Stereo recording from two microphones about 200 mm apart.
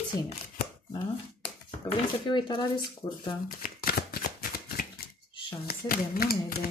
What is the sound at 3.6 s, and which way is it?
Shuffling cards, 45° left (ahead or behind).